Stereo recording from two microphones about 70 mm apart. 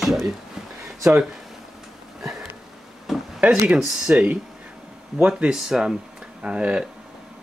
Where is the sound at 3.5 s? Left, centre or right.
Centre.